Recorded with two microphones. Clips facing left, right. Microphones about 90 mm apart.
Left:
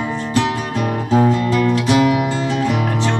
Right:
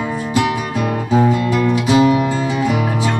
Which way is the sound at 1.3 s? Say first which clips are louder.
Even; 15° right (ahead or behind).